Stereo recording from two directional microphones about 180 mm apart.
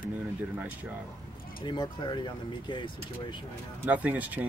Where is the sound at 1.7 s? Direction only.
25° left (ahead or behind).